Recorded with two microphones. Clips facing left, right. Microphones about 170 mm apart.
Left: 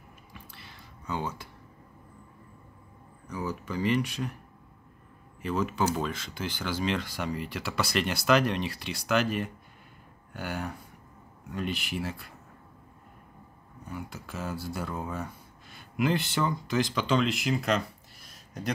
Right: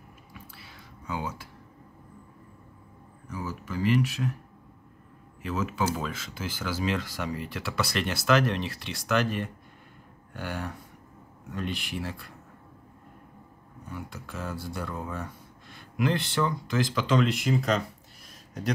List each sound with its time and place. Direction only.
0.6 s a sound: 5° right (ahead or behind)
3.3 s speech: 5° right (ahead or behind)
5.4 s speech: centre (ahead or behind)
13.8 s speech: centre (ahead or behind)